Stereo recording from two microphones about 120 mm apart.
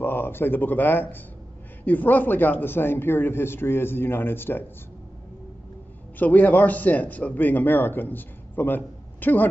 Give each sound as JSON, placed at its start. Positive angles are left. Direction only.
{"t": 0.0, "sound": "a man's voice", "side_deg": 20}
{"t": 6.1, "sound": "a man's voice", "side_deg": 15}